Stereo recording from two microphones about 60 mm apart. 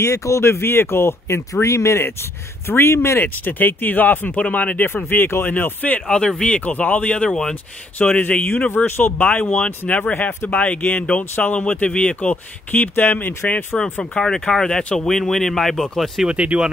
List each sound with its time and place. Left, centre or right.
0.0 s speech: left
4.8 s speech: left
6.0 s speech: centre
7.1 s speech: centre
8.0 s speech: left
8.7 s speech: left
9.2 s speech: left
14.2 s speech: centre
15.0 s speech: centre
16.3 s speech: centre